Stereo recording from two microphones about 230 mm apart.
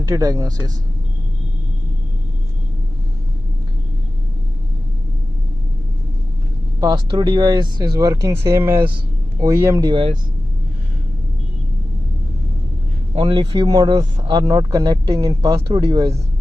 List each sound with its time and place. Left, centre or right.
0.1 s speech: centre
6.8 s speech: centre
13.1 s speech: centre